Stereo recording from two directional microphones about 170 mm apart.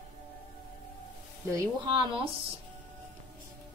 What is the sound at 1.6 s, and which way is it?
Speech, 20° right (ahead or behind).